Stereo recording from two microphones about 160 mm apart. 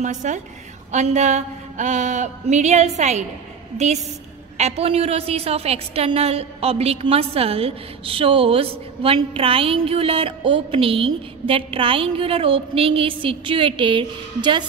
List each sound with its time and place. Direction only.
0.0 s a woman's voice: 50° right (ahead or behind); by 14.6 s 30° right (ahead or behind)